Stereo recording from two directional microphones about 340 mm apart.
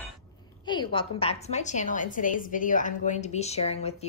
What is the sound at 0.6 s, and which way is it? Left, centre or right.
A woman's voice, centre.